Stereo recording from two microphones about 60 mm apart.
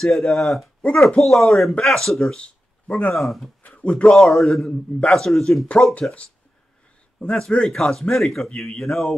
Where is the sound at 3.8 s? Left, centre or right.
Centre.